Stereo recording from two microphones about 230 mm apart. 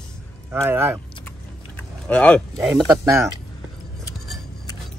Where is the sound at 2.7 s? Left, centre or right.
Centre.